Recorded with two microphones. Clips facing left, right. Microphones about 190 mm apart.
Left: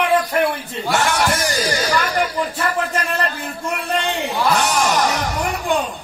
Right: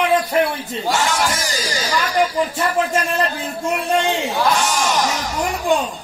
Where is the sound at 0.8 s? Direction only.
60° left (ahead or behind).